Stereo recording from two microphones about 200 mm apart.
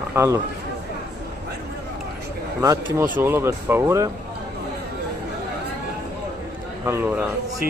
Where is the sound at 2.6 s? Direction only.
15° right (ahead or behind).